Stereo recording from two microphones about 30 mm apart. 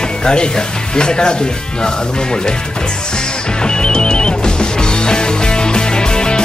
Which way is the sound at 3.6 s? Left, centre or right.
Left.